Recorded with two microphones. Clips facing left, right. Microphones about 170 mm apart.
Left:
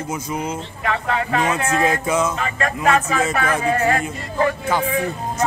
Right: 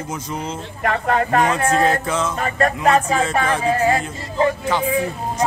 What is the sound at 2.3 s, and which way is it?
Music, 40° right (ahead or behind).